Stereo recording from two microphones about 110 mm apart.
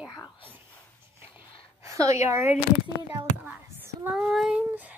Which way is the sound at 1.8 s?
30° right (ahead or behind).